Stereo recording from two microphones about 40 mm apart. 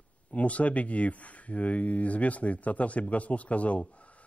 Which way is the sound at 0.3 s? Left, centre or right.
Left.